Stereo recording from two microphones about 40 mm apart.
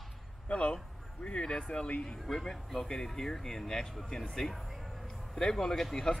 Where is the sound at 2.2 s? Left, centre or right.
Centre.